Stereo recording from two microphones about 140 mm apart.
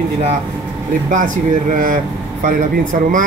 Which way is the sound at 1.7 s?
70° right (ahead or behind).